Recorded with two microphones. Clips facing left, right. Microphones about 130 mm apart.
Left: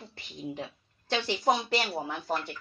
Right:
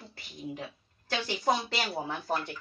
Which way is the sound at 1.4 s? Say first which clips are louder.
Left 2 dB; 10° left (ahead or behind).